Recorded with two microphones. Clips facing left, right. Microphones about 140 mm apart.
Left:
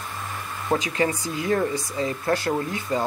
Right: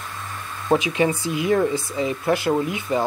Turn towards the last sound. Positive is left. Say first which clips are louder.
# right 3 dB
turn(degrees=-15)  # may be behind; listen again after turning